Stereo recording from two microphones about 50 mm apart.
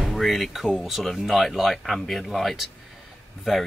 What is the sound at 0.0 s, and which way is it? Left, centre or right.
Speech, centre.